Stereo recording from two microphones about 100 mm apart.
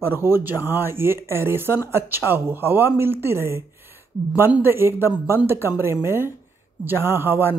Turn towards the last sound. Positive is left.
turn(degrees=-25)  # may be behind; listen again after turning